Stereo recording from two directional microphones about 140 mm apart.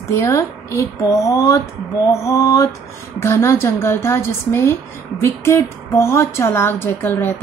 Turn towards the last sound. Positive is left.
turn(degrees=15)  # may be behind; listen again after turning